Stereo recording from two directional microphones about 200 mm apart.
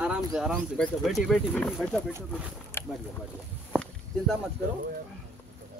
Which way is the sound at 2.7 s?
10° left (ahead or behind).